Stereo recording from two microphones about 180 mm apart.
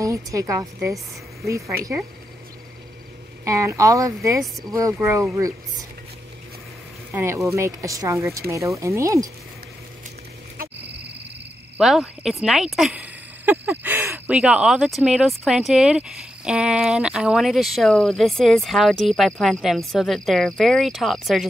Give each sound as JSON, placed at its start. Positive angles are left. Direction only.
{"t": 0.0, "sound": "a woman's voice", "side_deg": -15}
{"t": 3.4, "sound": "a woman's voice", "side_deg": -15}
{"t": 4.4, "sound": "speech", "side_deg": 0}
{"t": 4.7, "sound": "a woman's voice", "side_deg": -15}
{"t": 7.1, "sound": "a woman's voice", "side_deg": -10}
{"t": 11.8, "sound": "speech", "side_deg": -5}